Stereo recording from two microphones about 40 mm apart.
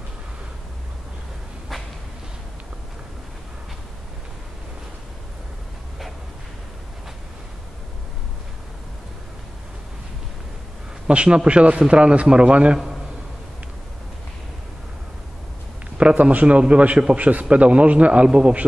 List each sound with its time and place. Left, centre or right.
11.1 s speech: right
16.0 s a man's voice: right